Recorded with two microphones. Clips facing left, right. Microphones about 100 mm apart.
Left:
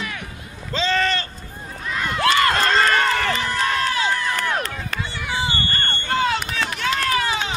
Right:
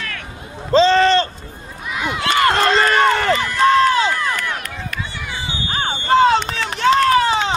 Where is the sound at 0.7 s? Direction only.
30° right (ahead or behind).